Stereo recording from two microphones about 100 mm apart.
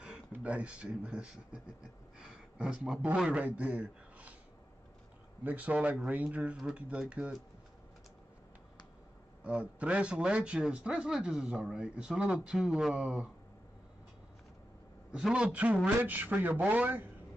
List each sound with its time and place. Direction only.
0.0 s a man's voice: 10° right (ahead or behind)
5.4 s a man's voice: 15° right (ahead or behind)
9.4 s a man's voice: 10° right (ahead or behind)
15.1 s a man's voice: 10° right (ahead or behind)